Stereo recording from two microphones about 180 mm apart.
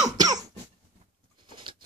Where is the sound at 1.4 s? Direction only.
25° right (ahead or behind).